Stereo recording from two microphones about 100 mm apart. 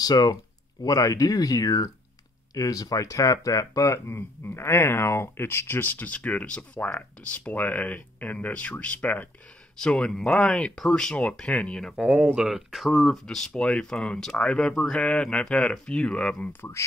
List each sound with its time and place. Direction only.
0.0 s speech: 40° left (ahead or behind); by 12.0 s 5° left (ahead or behind)
12.0 s speech: 10° right (ahead or behind); by 16.4 s 10° left (ahead or behind)